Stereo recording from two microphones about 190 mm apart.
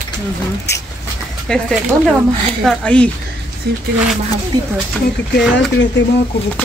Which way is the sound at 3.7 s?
60° right (ahead or behind).